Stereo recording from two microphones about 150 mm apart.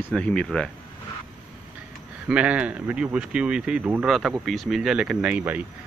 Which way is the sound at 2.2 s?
5° right (ahead or behind).